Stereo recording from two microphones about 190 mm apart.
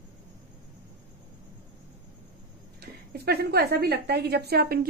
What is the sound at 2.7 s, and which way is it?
A woman's voice, 55° right (ahead or behind).